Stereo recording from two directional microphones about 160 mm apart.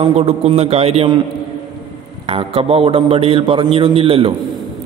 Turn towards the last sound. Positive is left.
turn(degrees=-35)  # may be behind; listen again after turning